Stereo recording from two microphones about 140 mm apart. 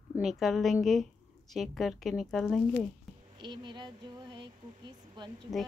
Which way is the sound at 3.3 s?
35° right (ahead or behind).